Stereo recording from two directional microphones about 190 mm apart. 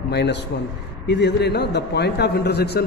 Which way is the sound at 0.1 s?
60° left (ahead or behind).